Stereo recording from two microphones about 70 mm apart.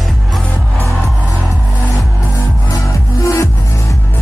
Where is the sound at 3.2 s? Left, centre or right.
Left.